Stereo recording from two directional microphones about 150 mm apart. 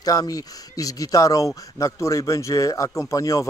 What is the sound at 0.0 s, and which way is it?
A man's voice, 25° left (ahead or behind).